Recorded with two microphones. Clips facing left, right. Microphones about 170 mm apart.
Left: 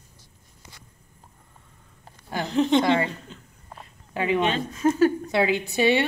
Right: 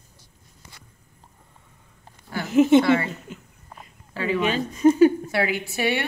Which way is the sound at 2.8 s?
15° left (ahead or behind).